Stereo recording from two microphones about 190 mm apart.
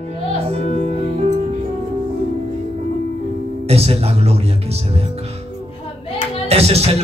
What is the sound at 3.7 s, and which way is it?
A man's voice, 30° right (ahead or behind).